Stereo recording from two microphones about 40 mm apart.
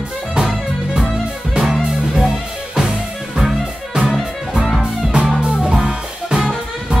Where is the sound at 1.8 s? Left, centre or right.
Centre.